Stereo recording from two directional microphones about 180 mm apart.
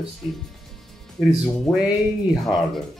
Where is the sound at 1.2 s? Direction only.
Centre (ahead or behind).